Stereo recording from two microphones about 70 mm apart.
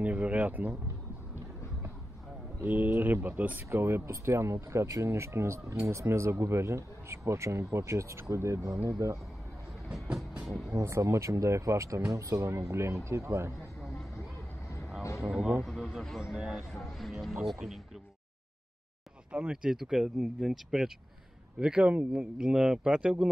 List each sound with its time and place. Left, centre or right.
0.0 s speech: right
2.6 s speech: right
3.7 s speech: right
10.4 s speech: centre
10.7 s speech: right
13.7 s a sound: centre
15.2 s speech: centre
15.6 s a sound: centre
16.2 s speech: centre
19.5 s speech: centre